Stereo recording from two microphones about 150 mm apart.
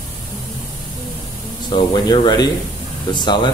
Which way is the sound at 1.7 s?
30° left (ahead or behind).